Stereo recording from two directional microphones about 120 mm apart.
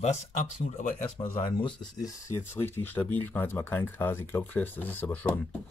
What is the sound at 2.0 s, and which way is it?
Speech, 20° left (ahead or behind).